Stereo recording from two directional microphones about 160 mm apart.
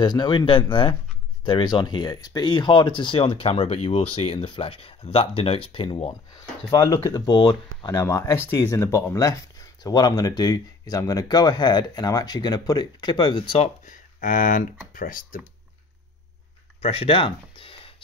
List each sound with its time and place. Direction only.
0.0 s speech: 25° left (ahead or behind)
13.8 s speech: 60° left (ahead or behind)
16.8 s a sound: 35° left (ahead or behind)